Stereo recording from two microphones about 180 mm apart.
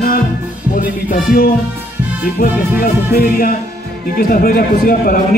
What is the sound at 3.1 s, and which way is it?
Music, 55° left (ahead or behind).